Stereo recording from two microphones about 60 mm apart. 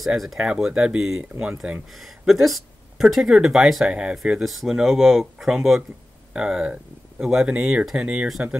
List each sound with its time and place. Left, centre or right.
0.0 s speech: centre
1.9 s speech: centre